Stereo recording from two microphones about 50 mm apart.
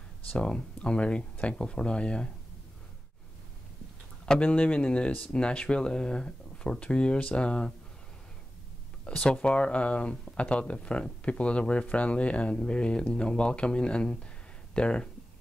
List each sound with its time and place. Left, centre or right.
0.3 s speech: centre
4.4 s speech: left
9.0 s speech: centre